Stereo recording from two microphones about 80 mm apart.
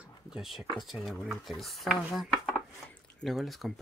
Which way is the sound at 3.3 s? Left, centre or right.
Centre.